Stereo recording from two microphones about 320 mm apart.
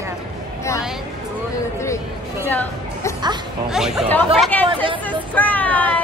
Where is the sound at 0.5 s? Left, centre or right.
Centre.